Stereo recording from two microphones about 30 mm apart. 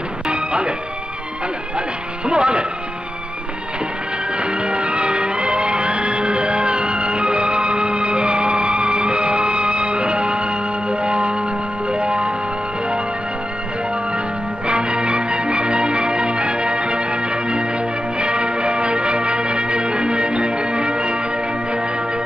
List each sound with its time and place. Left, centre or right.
0.3 s music: right
2.2 s speech: right
4.4 s music: right
14.7 s music: right